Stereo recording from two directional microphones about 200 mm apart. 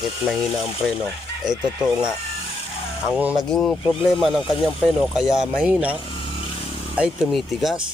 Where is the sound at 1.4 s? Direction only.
20° right (ahead or behind).